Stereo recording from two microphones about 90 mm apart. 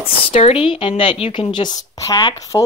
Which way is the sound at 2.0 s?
40° left (ahead or behind).